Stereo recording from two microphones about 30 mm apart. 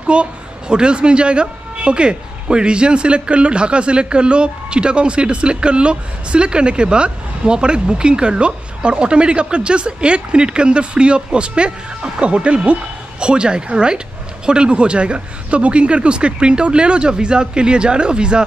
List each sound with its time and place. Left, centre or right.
0.0 s speech: right